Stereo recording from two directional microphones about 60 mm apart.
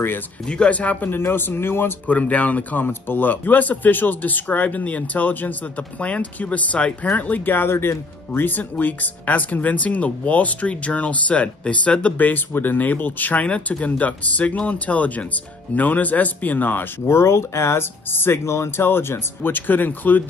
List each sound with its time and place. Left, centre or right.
0.5 s speech: centre; by 2.0 s left
2.0 s speech: left
17.1 s speech: left